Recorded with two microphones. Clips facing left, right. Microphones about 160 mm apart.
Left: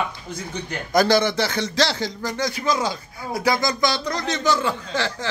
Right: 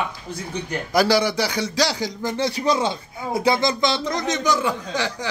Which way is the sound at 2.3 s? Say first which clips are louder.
Right 3 dB; 30° right (ahead or behind).